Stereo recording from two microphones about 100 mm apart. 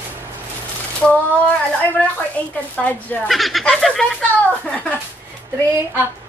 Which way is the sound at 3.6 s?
Centre (ahead or behind).